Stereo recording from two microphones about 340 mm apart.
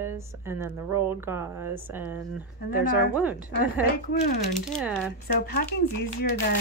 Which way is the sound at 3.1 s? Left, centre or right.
Centre.